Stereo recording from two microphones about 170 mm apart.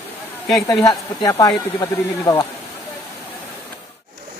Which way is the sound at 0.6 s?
20° left (ahead or behind).